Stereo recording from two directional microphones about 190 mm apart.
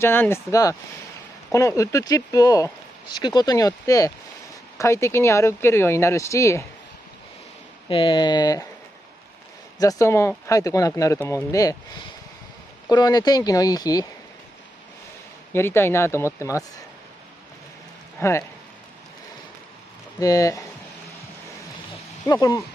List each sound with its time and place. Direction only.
0.0 s speech: 10° left (ahead or behind)
7.9 s speech: 25° left (ahead or behind)
9.8 s speech: 15° left (ahead or behind)
12.9 s speech: 20° left (ahead or behind)
15.5 s speech: 15° left (ahead or behind)
18.2 s speech: 15° left (ahead or behind)
20.2 s speech: 20° left (ahead or behind)
22.2 s speech: 20° left (ahead or behind)